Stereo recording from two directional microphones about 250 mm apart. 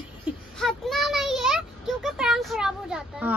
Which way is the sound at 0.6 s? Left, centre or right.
Centre.